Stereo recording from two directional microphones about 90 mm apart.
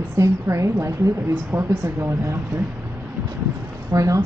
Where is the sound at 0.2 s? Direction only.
35° right (ahead or behind).